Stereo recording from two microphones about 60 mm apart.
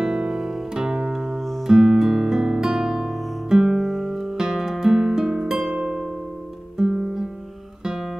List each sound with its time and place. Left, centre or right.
0.0 s music: centre
1.7 s music: centre
7.8 s guitar: centre